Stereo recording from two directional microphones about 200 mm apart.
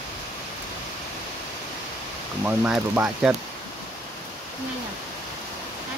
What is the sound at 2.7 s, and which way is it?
Speech, 5° right (ahead or behind).